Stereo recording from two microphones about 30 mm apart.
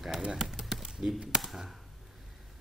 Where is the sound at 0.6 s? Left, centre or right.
Centre.